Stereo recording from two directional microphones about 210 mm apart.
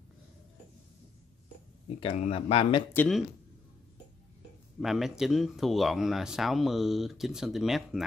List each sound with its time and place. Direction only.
2.0 s speech: 30° left (ahead or behind)
2.9 s speech: 5° left (ahead or behind)
4.7 s speech: centre (ahead or behind)